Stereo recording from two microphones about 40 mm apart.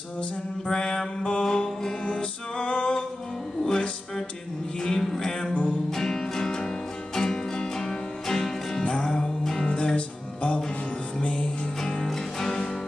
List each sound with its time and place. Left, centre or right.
0.7 s mantra: centre
1.4 s music: centre
8.8 s music: left
9.9 s music: left; by 12.6 s centre